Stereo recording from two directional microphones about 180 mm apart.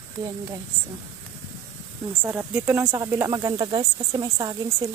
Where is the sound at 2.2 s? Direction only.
10° right (ahead or behind).